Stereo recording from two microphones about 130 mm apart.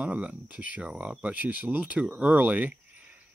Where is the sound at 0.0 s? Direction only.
10° right (ahead or behind).